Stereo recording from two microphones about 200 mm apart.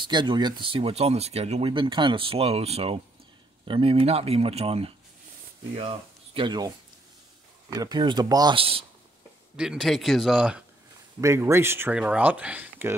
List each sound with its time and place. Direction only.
0.0 s speech: 25° right (ahead or behind)
7.7 s speech: 20° right (ahead or behind)
9.6 s speech: centre (ahead or behind)
11.1 s speech: 15° right (ahead or behind)